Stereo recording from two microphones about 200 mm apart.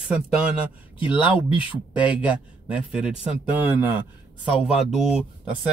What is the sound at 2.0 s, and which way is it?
Speech, 5° right (ahead or behind).